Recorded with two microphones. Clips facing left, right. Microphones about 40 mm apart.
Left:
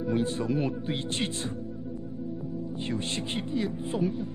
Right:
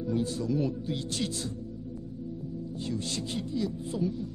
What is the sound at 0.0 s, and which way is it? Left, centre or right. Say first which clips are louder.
Speech: left 2 dB; left.